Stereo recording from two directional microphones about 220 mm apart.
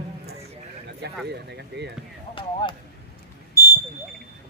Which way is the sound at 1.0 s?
50° right (ahead or behind).